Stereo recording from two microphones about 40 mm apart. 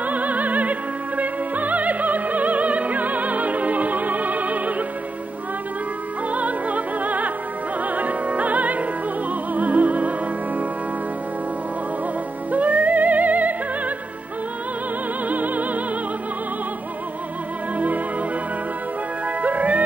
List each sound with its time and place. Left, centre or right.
0.0 s opera: right
6.3 s music: right
7.8 s opera: right
9.3 s music: right
12.4 s music: right
15.2 s music: right
17.7 s music: right
19.2 s music: right